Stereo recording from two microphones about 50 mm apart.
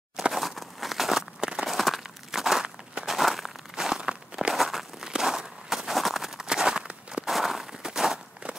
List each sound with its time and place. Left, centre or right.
0.3 s a sound: centre
3.7 s walk: centre
4.6 s a sound: centre
5.1 s walk: centre
6.4 s walk: centre
7.2 s walk: centre